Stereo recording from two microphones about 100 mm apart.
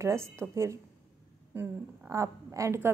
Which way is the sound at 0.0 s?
25° right (ahead or behind).